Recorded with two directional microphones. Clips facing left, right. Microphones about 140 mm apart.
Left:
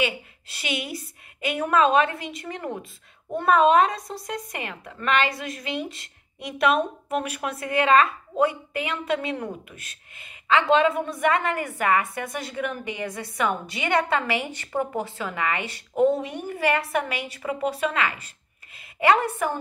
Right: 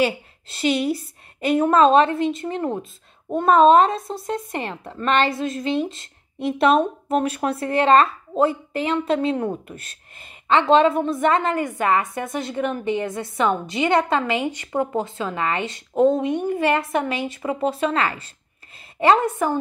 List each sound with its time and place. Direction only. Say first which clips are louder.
0.0 s a woman's voice: right 5 dB; 30° right (ahead or behind)